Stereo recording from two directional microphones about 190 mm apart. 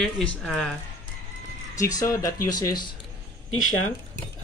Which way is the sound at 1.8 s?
20° left (ahead or behind).